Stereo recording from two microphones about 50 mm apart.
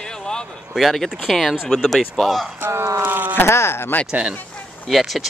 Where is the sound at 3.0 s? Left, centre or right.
Right.